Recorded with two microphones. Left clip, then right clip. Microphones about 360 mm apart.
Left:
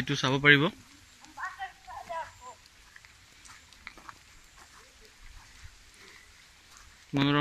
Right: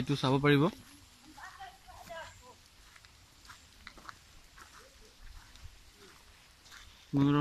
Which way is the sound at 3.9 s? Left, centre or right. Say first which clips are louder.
Left 5 dB; centre.